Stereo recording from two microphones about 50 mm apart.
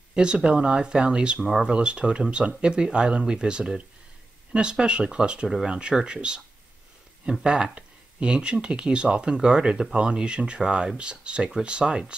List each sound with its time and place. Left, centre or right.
0.1 s speech: centre
7.4 s speech: centre